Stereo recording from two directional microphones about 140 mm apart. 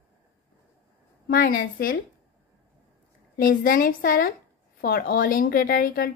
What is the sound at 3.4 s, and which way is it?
A woman's voice, 80° left.